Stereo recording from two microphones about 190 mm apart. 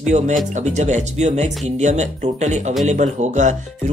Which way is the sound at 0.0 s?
40° right (ahead or behind).